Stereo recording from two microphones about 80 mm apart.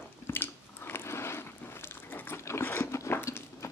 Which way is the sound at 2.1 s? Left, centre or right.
Left.